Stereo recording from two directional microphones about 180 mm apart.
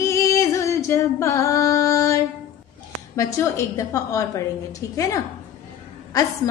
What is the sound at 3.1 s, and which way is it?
Female singing, 15° left (ahead or behind).